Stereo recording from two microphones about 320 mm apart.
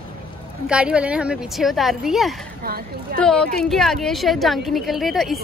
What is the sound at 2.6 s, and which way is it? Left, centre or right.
Speech, right.